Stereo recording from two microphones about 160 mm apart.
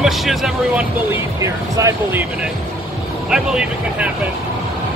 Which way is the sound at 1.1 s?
20° right (ahead or behind).